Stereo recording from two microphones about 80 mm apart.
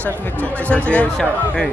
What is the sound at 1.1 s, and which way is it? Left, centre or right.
Speech, centre.